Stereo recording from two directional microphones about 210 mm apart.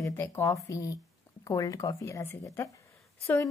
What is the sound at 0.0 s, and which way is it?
A woman's voice, 10° left (ahead or behind).